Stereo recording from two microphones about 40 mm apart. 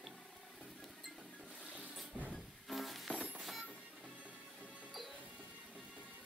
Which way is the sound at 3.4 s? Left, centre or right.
Centre.